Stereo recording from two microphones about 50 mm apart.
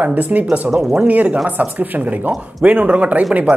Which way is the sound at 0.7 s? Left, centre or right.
Centre.